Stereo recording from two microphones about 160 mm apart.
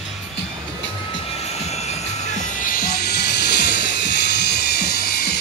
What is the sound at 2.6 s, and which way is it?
Music, 65° left (ahead or behind).